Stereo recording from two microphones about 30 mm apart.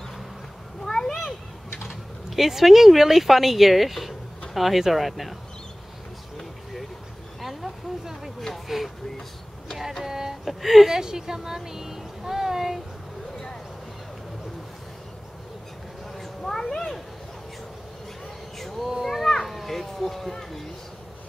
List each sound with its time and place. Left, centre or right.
0.8 s a sound: centre
1.8 s speech: centre
6.3 s vehicle: centre
7.4 s a sound: centre
8.6 s speech: centre
10.0 s speech: centre
10.4 s speech: centre
10.9 s speech: centre
16.2 s cat: centre
19.0 s a child's voice: centre